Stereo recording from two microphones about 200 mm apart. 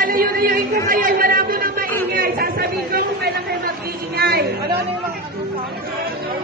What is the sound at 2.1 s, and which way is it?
Chatter, 50° right (ahead or behind).